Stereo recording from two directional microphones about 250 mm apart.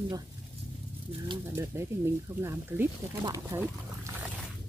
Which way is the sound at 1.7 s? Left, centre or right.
Centre.